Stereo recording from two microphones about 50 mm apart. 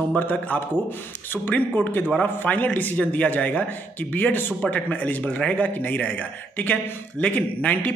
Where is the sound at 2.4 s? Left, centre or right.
Left.